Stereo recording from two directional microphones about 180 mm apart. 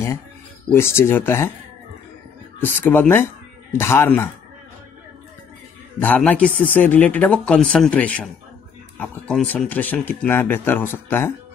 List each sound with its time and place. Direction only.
0.7 s speech: 15° left (ahead or behind)
2.6 s speech: 10° left (ahead or behind)
5.9 s speech: 10° left (ahead or behind)